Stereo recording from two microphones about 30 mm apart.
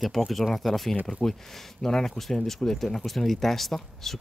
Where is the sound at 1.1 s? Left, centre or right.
Left.